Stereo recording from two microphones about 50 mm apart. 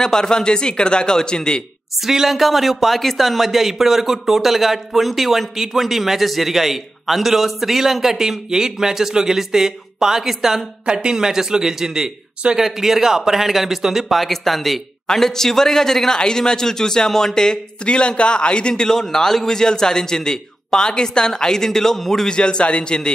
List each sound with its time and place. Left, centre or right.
0.0 s a man's voice: centre
2.0 s a man's voice: centre
22.3 s a man's voice: centre